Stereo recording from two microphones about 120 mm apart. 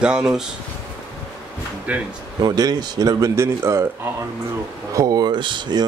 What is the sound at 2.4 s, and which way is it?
Speech, 35° right (ahead or behind).